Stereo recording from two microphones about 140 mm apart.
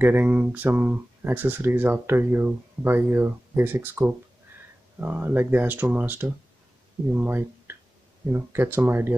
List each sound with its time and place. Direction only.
0.0 s speech: 15° right (ahead or behind)